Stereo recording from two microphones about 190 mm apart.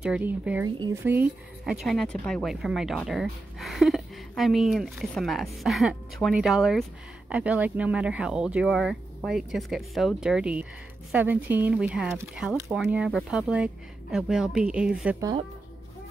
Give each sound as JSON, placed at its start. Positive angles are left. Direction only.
{"t": 0.0, "sound": "speech", "side_deg": -5}
{"t": 15.1, "sound": "speech", "side_deg": -20}